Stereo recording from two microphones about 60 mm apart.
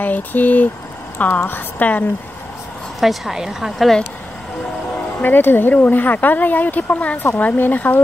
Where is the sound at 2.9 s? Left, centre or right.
Centre.